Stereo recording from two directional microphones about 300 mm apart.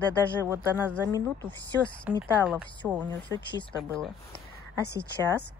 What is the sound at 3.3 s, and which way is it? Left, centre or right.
Speech, centre.